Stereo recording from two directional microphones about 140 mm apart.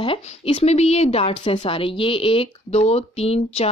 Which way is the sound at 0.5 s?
50° left (ahead or behind).